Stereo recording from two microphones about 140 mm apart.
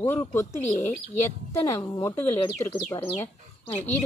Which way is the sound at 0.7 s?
60° left (ahead or behind).